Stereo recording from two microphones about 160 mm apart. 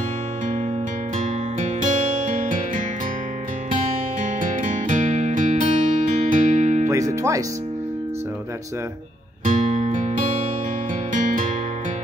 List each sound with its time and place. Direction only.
4.2 s music: 55° right (ahead or behind)
6.9 s music: 20° right (ahead or behind)
9.4 s music: 50° right (ahead or behind)